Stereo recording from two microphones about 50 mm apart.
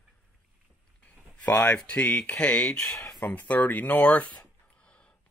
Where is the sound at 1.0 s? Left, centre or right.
Left.